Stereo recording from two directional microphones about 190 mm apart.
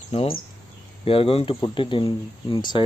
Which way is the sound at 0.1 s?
30° left (ahead or behind).